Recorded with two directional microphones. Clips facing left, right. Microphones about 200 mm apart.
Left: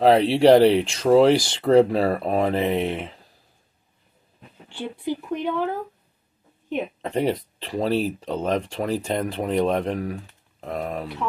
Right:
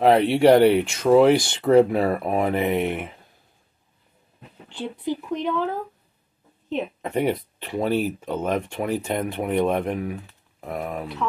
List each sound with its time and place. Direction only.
0.0 s speech: 30° left (ahead or behind)
4.6 s speech: 10° left (ahead or behind)
7.0 s speech: 30° left (ahead or behind)